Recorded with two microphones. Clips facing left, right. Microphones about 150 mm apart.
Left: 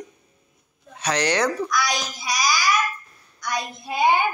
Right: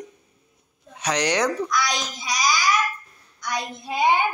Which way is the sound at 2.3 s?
10° left (ahead or behind).